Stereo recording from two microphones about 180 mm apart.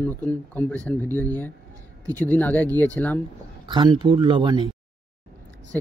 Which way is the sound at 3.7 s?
25° right (ahead or behind).